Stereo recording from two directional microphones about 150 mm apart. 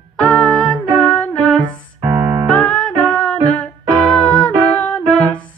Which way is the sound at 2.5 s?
5° left (ahead or behind).